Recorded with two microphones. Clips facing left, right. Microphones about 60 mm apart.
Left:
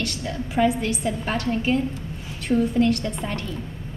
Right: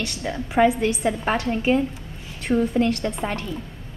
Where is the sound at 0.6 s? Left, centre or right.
Right.